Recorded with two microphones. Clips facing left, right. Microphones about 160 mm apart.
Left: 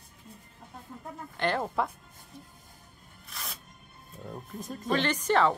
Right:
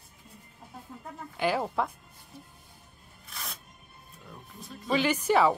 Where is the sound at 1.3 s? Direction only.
5° right (ahead or behind).